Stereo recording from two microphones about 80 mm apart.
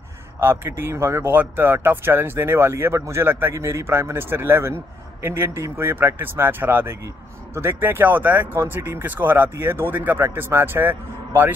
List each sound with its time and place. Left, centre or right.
0.4 s speech: right